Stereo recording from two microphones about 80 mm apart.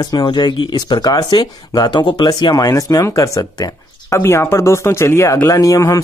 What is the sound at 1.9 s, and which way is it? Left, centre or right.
Speech, left.